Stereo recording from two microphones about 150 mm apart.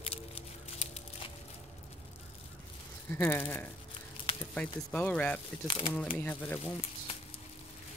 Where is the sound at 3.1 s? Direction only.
15° left (ahead or behind).